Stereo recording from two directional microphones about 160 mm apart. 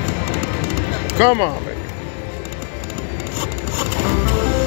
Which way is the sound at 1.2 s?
20° right (ahead or behind).